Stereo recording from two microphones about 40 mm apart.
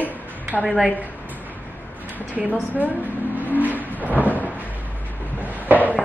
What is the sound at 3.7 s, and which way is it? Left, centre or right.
Vehicle, left.